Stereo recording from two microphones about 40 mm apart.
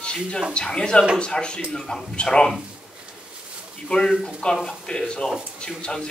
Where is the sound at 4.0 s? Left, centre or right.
Centre.